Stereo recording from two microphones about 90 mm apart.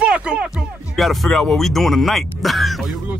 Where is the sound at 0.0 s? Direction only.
15° right (ahead or behind).